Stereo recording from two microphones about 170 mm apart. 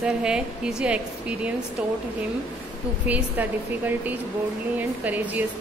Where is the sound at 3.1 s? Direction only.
10° right (ahead or behind).